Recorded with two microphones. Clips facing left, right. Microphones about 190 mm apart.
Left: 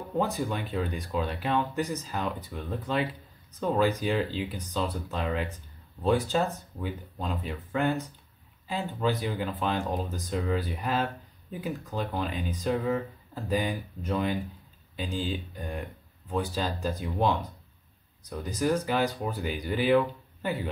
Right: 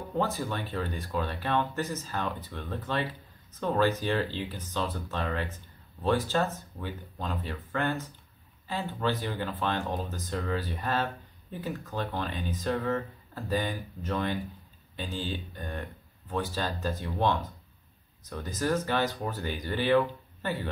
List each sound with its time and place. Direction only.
0.1 s speech: 15° left (ahead or behind)